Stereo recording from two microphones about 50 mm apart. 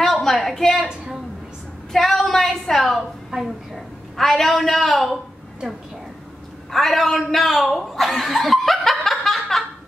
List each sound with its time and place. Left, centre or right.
0.0 s a woman's voice: centre
0.8 s a woman's voice: centre
1.9 s a woman's voice: centre
6.7 s speech: centre